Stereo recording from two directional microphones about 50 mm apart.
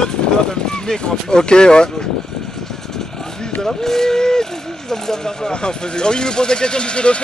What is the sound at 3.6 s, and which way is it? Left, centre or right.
Speech, centre.